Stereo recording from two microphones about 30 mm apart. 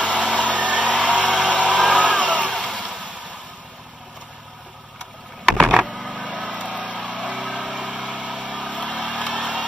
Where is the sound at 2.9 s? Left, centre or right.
Right.